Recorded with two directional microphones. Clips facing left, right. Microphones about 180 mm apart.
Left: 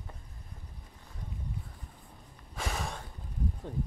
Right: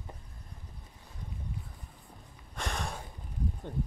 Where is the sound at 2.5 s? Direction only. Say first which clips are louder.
Even; 5° left (ahead or behind).